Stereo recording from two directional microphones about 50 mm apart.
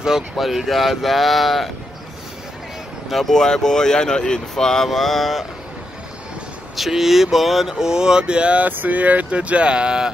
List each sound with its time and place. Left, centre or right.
0.0 s speech: centre
3.1 s speech: centre
6.8 s speech: centre